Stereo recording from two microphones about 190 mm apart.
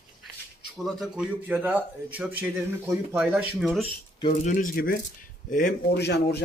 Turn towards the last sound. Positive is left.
turn(degrees=60)  # may be behind; listen again after turning